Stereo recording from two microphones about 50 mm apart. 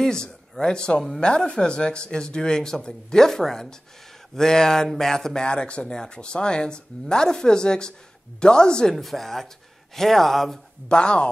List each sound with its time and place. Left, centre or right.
0.0 s speech: centre
8.9 s speech: centre
10.9 s speech: centre